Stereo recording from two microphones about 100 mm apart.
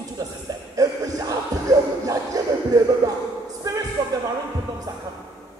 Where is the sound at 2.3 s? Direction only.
35° right (ahead or behind).